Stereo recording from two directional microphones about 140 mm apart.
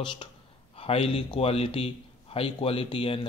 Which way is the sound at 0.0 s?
35° left (ahead or behind).